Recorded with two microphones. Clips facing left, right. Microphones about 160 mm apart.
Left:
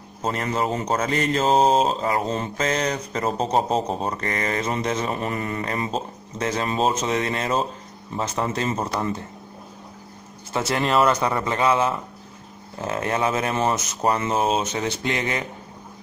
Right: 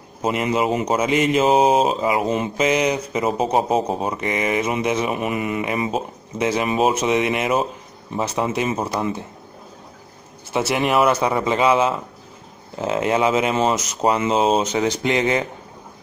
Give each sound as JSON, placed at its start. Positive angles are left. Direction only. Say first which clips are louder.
{"t": 0.2, "sound": "speech", "louder": "right 4 dB", "side_deg": -15}
{"t": 10.5, "sound": "speech", "louder": "right 2 dB", "side_deg": -15}